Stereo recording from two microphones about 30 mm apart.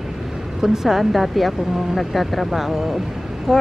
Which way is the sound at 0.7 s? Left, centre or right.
Centre.